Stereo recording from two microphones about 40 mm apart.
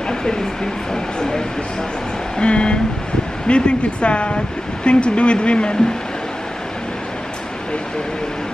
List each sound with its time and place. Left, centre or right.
2.3 s speech: left